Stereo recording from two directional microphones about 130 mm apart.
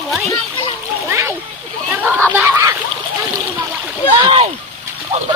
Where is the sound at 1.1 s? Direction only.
20° right (ahead or behind).